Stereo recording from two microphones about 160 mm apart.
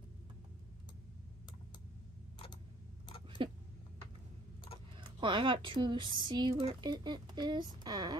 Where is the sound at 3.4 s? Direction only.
30° right (ahead or behind).